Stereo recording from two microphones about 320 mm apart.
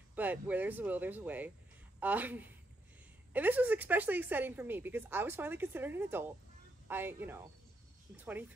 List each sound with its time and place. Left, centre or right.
0.1 s a woman's voice: centre